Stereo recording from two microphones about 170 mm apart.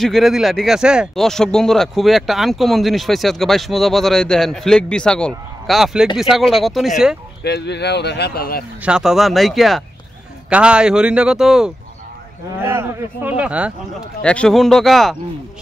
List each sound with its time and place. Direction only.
0.0 s speech: centre (ahead or behind)
7.4 s speech: 75° left (ahead or behind)
8.8 s speech: 5° right (ahead or behind)
12.5 s speech: 15° right (ahead or behind)
14.2 s speech: 5° left (ahead or behind)